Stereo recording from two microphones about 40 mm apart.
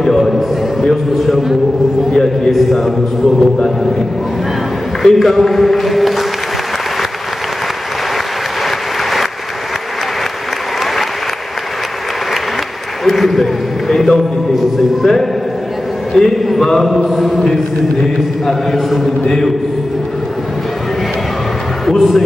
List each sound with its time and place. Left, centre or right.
0.0 s a man's voice: centre
0.3 s a man's voice: centre
2.1 s a man's voice: centre
2.5 s speech: centre
5.0 s speech: centre
8.6 s applause: centre
13.0 s a sound: centre
14.5 s a sound: centre
16.1 s a man's voice: centre
18.9 s speech: centre
21.8 s speech: centre